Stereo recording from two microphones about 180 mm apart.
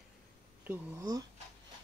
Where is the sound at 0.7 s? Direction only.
20° right (ahead or behind).